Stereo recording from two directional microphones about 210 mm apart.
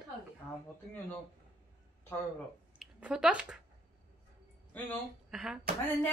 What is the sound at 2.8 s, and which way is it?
Speech, 5° right (ahead or behind).